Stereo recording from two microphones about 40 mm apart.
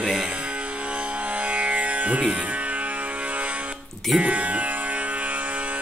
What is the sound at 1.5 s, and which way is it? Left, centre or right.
Music, right.